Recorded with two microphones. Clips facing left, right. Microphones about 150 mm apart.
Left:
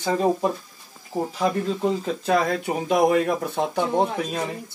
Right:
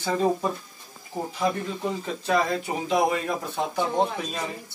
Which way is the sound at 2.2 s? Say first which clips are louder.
Left 2 dB; 55° left (ahead or behind).